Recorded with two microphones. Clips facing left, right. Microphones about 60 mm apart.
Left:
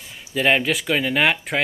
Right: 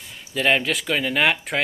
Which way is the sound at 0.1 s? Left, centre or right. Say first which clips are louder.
Left 1 dB; centre.